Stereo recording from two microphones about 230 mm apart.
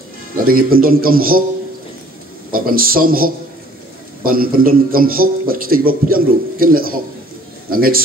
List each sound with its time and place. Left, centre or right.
0.4 s a man's voice: right
2.5 s a man's voice: right